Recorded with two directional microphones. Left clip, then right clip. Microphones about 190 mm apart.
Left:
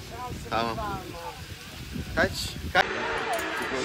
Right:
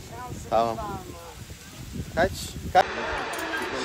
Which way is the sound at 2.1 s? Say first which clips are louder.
Right 1 dB; 60° right (ahead or behind).